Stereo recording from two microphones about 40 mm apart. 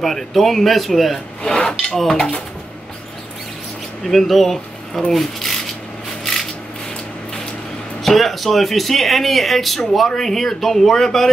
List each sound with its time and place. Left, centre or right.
0.0 s speech: centre
1.4 s rub: left
2.0 s speech: centre
4.1 s speech: centre
8.0 s speech: centre